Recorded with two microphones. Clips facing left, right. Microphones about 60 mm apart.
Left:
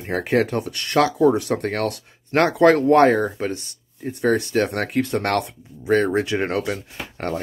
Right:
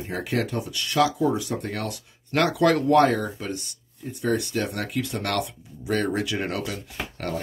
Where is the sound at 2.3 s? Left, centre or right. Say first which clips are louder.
Left 5 dB; left.